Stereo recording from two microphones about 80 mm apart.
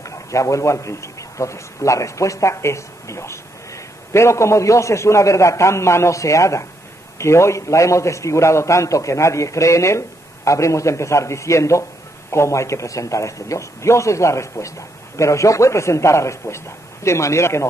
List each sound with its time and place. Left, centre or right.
0.0 s a man's voice: left